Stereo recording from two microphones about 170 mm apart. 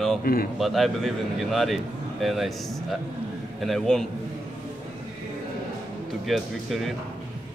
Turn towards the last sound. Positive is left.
turn(degrees=0)  # may be behind; listen again after turning